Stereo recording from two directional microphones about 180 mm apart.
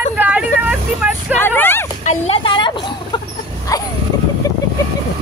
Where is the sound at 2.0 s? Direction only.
40° left (ahead or behind); by 3.8 s 20° left (ahead or behind).